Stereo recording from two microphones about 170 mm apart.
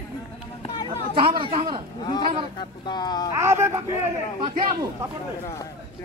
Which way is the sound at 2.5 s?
25° left (ahead or behind).